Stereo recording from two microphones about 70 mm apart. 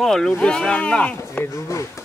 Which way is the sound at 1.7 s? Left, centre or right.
Left.